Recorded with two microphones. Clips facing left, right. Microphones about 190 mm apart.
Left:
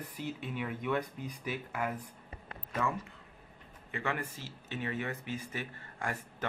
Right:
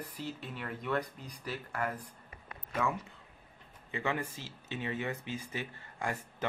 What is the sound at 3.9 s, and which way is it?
Speech, 15° right (ahead or behind).